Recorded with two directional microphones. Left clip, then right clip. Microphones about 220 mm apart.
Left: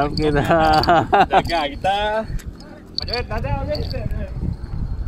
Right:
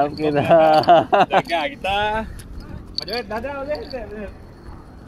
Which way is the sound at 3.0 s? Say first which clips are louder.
Even; 50° right (ahead or behind).